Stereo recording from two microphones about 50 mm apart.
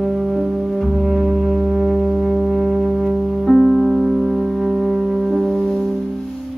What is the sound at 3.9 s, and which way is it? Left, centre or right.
Music, centre.